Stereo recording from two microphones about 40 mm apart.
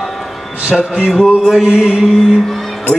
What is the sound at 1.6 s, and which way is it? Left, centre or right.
Mantra, right.